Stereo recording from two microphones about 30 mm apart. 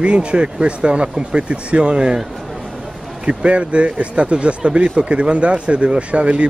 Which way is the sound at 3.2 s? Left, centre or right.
Right.